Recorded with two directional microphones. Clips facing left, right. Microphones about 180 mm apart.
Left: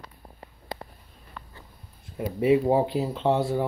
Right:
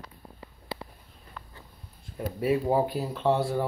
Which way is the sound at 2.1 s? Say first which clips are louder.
Left 5 dB; 20° left (ahead or behind).